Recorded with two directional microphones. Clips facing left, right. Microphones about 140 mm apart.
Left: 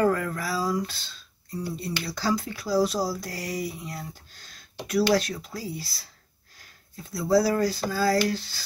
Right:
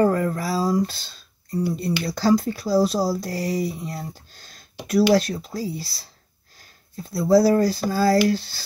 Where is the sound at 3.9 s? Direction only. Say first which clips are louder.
Right 5 dB; 35° right (ahead or behind).